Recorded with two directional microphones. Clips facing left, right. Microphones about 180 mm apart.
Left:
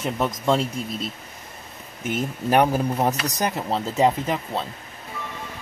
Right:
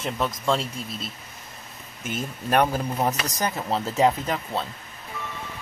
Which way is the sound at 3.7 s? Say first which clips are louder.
Even; 5° left (ahead or behind).